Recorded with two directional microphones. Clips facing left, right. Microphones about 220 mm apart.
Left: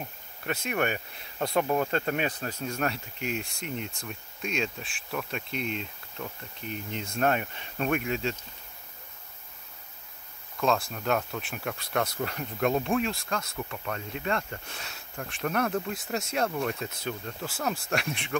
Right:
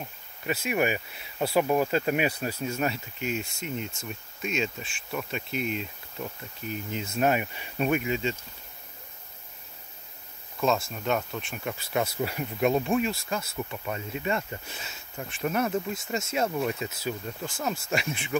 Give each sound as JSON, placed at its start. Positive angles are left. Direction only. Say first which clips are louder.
{"t": 0.0, "sound": "speech", "louder": "right 1 dB", "side_deg": -5}
{"t": 10.6, "sound": "speech", "louder": "right 1 dB", "side_deg": 0}